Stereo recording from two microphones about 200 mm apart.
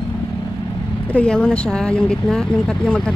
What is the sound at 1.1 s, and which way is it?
Speech, 5° left (ahead or behind).